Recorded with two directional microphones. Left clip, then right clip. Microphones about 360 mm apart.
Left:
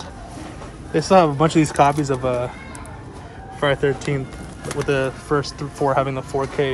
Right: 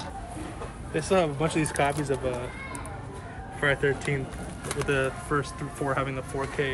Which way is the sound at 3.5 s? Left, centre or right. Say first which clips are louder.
Left 6 dB; centre.